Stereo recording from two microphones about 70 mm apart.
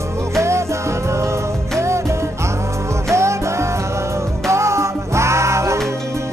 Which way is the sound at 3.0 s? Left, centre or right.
Right.